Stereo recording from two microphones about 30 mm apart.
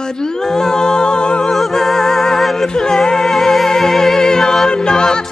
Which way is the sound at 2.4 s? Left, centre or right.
Centre.